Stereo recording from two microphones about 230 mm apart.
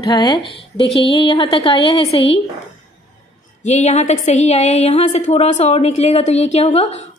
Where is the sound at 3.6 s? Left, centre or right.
Left.